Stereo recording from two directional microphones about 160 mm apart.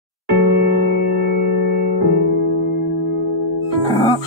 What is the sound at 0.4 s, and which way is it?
Music, 90° right.